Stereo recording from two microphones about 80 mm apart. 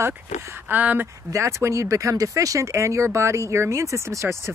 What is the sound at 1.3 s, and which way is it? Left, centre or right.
Speech, right.